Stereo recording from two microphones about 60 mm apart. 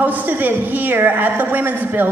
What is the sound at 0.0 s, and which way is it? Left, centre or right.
A man's voice, right.